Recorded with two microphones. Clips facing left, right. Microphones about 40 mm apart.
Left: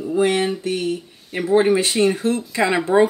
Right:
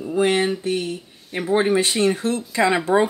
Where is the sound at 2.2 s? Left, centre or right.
Left.